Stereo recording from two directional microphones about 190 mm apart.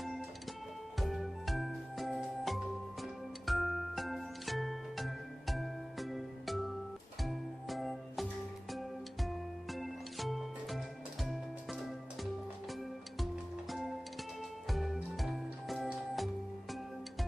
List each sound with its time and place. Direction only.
0.9 s music: centre (ahead or behind)